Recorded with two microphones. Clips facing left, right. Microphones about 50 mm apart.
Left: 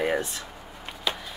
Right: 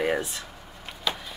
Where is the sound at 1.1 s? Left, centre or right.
Centre.